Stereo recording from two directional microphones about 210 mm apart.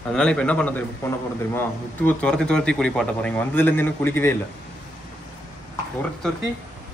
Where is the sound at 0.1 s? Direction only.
5° left (ahead or behind).